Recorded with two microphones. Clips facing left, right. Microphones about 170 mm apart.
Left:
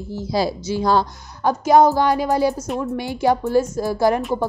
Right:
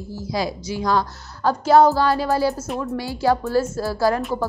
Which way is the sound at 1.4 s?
15° left (ahead or behind).